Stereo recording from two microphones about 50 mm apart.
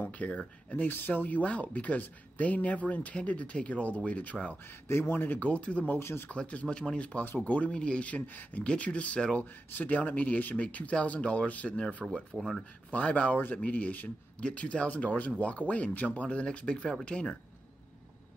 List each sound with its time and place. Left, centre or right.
0.2 s speech: left
4.8 s speech: left
5.4 s speech: left
5.9 s speech: left
6.2 s speech: left; by 12.6 s centre
12.9 s speech: left